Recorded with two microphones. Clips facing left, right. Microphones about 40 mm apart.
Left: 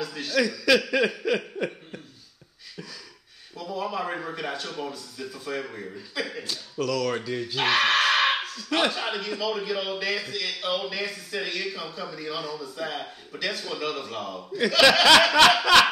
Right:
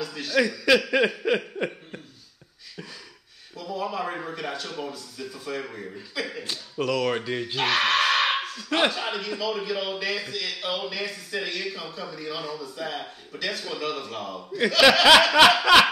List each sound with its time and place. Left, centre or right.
0.0 s a man's voice: centre
0.4 s speech: centre
3.5 s a man's voice: centre
6.4 s speech: right
7.5 s a sound: centre
8.6 s dog: centre
8.9 s a man's voice: centre